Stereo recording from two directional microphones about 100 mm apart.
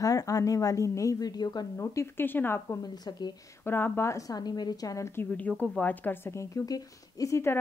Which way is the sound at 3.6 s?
20° left (ahead or behind).